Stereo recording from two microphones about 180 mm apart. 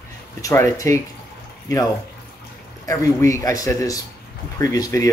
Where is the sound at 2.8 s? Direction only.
15° left (ahead or behind).